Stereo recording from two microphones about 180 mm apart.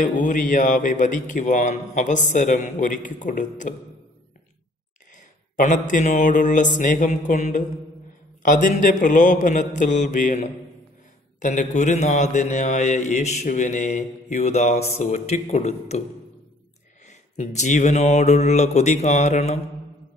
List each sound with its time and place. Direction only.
0.0 s speech: 45° left (ahead or behind)
5.1 s mantra: 45° left (ahead or behind)
8.4 s a man's voice: 45° left (ahead or behind)
17.0 s a man's voice: 40° left (ahead or behind)